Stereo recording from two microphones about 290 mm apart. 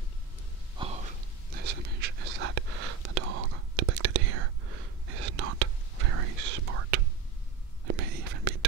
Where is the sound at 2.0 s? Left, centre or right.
Right.